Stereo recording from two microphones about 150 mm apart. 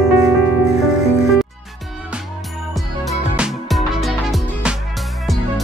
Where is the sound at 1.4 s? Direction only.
Centre (ahead or behind).